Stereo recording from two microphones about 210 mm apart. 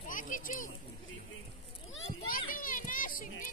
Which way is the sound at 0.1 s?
40° left (ahead or behind).